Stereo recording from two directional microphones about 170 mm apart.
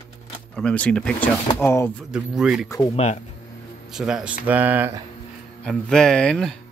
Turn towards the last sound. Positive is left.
turn(degrees=5)  # may be behind; listen again after turning